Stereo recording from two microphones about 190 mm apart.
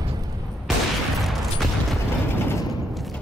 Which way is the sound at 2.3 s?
10° left (ahead or behind).